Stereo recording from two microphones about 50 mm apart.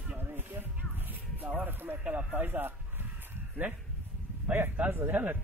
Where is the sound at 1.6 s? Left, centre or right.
Right.